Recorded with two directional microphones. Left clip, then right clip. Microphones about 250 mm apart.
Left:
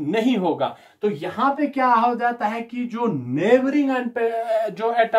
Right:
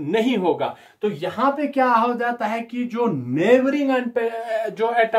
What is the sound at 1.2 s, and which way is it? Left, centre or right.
Speech, centre.